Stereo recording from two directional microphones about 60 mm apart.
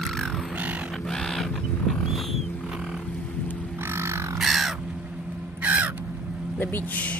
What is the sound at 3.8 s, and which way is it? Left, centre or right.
Crow, right.